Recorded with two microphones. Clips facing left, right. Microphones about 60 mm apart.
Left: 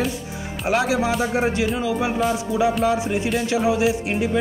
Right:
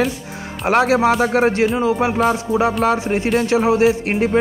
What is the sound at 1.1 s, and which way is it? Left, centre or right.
Speech, right.